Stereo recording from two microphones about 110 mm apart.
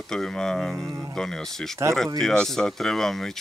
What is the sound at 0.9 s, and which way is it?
Speech, 30° right (ahead or behind).